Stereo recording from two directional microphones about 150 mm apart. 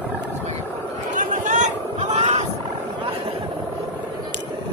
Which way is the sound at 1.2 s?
55° right (ahead or behind).